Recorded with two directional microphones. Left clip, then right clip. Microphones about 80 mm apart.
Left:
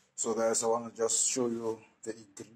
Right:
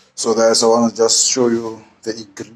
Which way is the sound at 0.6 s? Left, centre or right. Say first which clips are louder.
Right 17 dB; right.